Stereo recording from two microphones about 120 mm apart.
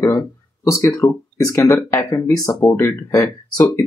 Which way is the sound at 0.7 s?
20° left (ahead or behind).